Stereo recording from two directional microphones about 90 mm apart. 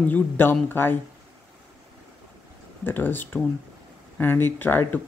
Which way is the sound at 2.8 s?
20° left (ahead or behind).